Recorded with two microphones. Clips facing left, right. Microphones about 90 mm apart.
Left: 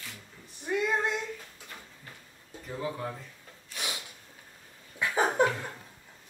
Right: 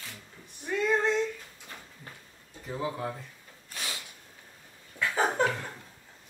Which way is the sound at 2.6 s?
10° right (ahead or behind).